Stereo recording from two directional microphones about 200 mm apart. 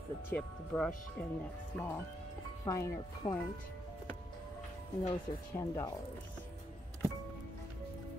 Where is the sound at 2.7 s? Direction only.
15° left (ahead or behind).